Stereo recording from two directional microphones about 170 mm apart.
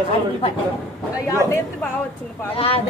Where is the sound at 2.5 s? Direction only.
35° left (ahead or behind).